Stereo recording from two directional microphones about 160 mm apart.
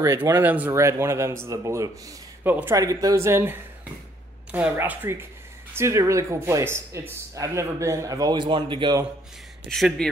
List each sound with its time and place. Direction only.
0.0 s speech: 20° right (ahead or behind)
9.7 s speech: centre (ahead or behind)